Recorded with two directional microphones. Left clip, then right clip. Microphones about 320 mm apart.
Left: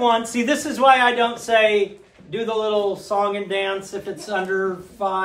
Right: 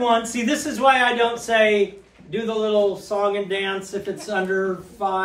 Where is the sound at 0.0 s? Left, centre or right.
Centre.